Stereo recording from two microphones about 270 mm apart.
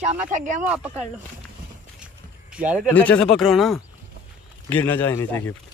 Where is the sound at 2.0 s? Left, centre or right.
Centre.